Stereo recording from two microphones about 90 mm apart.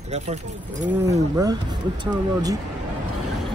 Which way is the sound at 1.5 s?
55° right (ahead or behind).